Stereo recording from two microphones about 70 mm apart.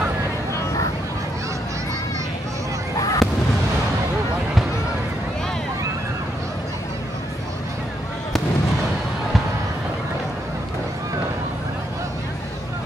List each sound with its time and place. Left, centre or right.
3.0 s fireworks: left